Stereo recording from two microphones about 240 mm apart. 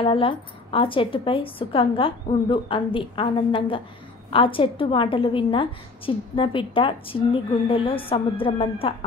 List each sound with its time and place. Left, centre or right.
0.0 s a woman's voice: left